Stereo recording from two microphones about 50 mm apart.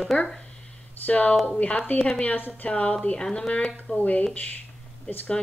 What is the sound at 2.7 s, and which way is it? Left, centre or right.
A woman's voice, left.